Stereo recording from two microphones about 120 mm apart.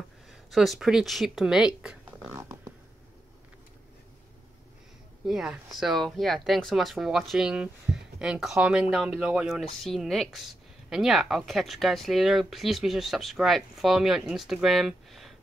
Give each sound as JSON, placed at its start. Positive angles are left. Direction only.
{"t": 0.5, "sound": "speech", "side_deg": 0}
{"t": 2.3, "sound": "a sound", "side_deg": -25}
{"t": 5.2, "sound": "speech", "side_deg": -5}